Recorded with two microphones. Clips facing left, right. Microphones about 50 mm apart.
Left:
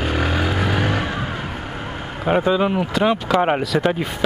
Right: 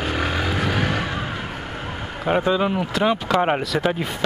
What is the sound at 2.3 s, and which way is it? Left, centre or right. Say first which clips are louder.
Speech: left 2 dB; centre.